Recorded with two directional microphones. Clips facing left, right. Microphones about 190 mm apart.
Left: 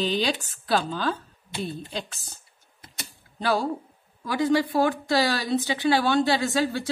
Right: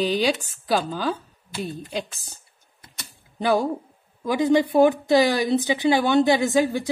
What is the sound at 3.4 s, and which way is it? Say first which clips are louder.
A woman's voice: right 4 dB; 15° right (ahead or behind).